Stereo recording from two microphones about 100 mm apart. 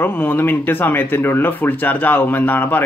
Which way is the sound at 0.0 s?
20° left (ahead or behind).